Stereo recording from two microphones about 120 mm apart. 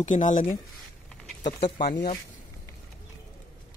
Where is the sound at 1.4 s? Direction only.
75° left (ahead or behind).